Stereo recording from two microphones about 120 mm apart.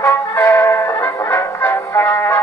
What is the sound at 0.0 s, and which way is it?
Music, 20° left (ahead or behind).